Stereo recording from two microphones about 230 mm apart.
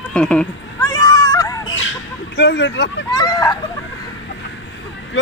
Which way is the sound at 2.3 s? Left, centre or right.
Left.